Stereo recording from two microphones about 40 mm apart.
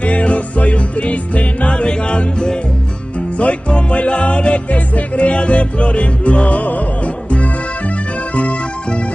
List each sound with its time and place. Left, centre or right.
0.0 s music: left
3.2 s music: left